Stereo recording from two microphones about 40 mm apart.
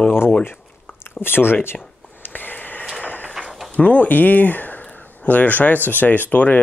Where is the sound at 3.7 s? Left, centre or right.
Left.